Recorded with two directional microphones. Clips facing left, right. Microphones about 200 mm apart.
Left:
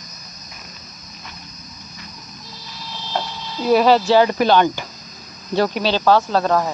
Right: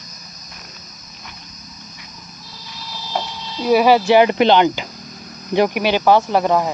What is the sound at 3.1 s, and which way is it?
Speech, 5° right (ahead or behind).